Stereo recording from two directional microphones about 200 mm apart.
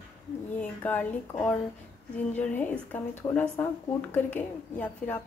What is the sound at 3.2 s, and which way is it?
Speech, 20° left (ahead or behind).